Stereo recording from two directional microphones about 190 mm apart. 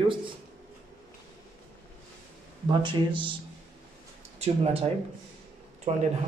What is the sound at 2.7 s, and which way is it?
Speech, 25° right (ahead or behind).